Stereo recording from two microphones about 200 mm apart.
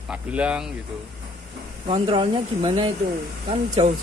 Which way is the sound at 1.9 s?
25° right (ahead or behind).